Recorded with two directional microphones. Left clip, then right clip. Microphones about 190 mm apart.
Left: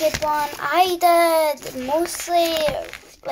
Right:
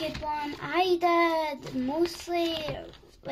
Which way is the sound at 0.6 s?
10° right (ahead or behind).